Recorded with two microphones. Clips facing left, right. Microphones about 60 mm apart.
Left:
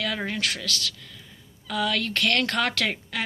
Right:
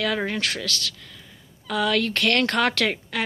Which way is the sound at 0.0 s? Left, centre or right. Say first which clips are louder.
Right 4 dB; right.